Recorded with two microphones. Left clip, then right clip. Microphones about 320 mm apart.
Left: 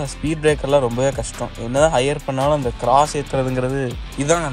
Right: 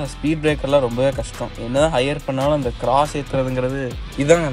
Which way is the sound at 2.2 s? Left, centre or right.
Left.